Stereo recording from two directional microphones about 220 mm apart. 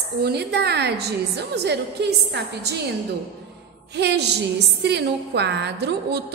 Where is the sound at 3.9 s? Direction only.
50° right (ahead or behind).